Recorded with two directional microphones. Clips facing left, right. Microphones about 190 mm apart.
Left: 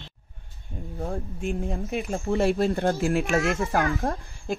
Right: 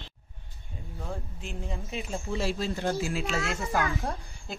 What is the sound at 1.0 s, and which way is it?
A woman's voice, 55° left (ahead or behind).